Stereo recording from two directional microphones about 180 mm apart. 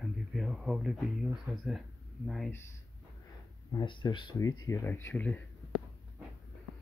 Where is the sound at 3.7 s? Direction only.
25° left (ahead or behind); by 5.4 s 10° left (ahead or behind).